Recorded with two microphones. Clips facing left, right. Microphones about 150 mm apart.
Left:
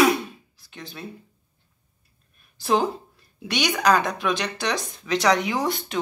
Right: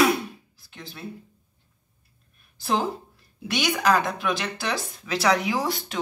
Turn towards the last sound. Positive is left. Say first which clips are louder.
# left 1 dB
turn(degrees=0)  # may be behind; listen again after turning